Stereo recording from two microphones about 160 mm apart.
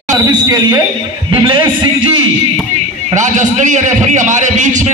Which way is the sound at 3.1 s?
50° right (ahead or behind).